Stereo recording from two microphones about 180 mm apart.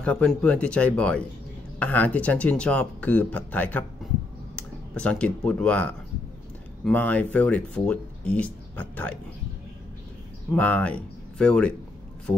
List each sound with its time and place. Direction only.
0.0 s speech: 5° left (ahead or behind)
10.5 s speech: 10° left (ahead or behind)